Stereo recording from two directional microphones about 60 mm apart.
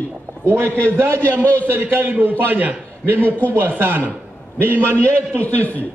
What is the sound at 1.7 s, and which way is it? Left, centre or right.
A man's voice, right.